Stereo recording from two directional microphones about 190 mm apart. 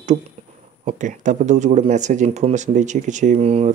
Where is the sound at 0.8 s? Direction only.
40° right (ahead or behind).